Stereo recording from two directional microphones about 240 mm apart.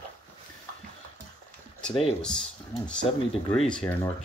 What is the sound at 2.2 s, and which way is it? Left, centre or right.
Speech, centre.